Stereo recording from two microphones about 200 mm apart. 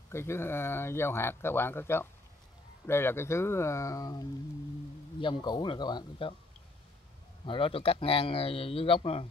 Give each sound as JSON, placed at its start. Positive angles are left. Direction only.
{"t": 0.1, "sound": "speech", "side_deg": 10}
{"t": 7.4, "sound": "speech", "side_deg": 25}